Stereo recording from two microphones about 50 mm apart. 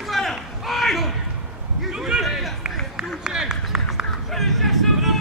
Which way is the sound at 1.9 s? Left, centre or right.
Centre.